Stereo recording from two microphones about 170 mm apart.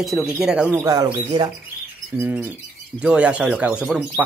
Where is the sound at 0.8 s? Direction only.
20° right (ahead or behind).